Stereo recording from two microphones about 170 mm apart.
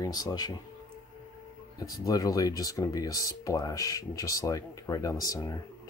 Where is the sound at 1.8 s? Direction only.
20° left (ahead or behind).